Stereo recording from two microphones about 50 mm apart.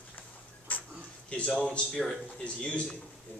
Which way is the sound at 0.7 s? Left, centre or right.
Left.